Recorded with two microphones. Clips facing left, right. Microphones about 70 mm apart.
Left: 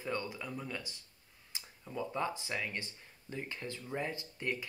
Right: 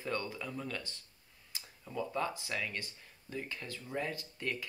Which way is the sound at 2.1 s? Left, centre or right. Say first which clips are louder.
Even; left.